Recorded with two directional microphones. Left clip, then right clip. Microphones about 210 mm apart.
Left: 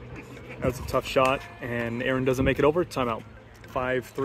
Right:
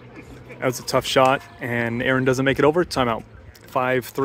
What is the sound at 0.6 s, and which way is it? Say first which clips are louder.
Speech: right 6 dB; 30° right (ahead or behind).